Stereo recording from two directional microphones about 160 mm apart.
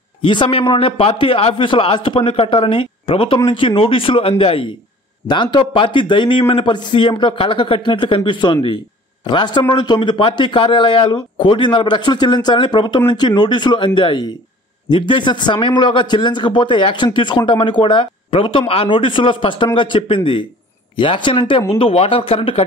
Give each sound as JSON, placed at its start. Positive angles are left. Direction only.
{"t": 0.2, "sound": "a man's voice", "side_deg": 30}